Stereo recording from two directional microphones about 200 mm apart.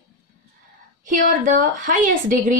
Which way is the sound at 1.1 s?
40° right (ahead or behind).